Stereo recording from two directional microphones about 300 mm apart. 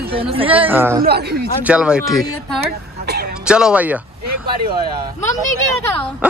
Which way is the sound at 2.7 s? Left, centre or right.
Right.